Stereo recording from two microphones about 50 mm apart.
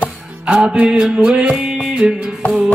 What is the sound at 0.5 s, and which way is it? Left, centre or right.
Music, centre.